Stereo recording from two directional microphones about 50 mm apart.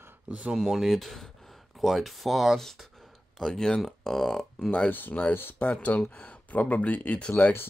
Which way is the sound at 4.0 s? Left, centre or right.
Centre.